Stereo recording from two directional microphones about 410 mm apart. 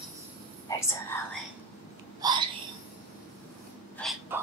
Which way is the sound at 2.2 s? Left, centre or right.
Centre.